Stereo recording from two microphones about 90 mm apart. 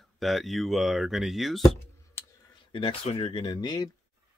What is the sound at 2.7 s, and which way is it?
Speech, 90° left.